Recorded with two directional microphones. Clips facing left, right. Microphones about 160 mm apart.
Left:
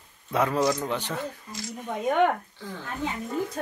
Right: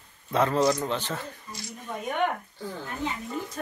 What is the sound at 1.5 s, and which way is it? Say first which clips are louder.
Speech: even; 90° left.